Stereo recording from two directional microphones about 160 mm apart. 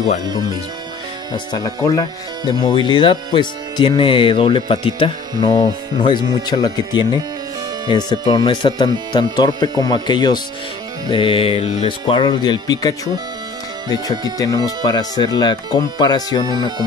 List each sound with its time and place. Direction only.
0.2 s speech: 25° right (ahead or behind)
1.3 s speech: 25° left (ahead or behind)
14.4 s speech: 25° left (ahead or behind)
16.4 s speech: 25° right (ahead or behind)